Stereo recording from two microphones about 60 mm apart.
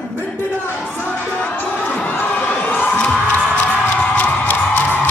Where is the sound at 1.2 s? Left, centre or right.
Left.